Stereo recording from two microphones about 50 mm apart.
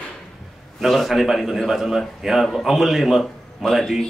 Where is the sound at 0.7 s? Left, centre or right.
Centre.